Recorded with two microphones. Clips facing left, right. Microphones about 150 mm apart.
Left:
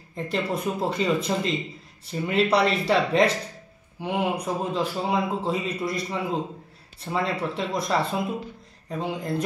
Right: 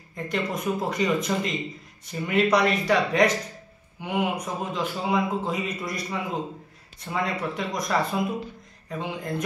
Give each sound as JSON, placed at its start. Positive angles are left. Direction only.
{"t": 0.1, "sound": "a man's voice", "side_deg": 30}